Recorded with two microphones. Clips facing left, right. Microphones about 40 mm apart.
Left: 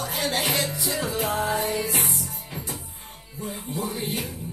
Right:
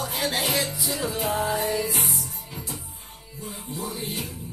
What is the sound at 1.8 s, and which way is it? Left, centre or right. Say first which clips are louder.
Music: left 1 dB; left.